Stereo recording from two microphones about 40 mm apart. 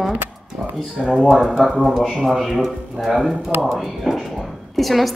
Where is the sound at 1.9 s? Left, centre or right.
Centre.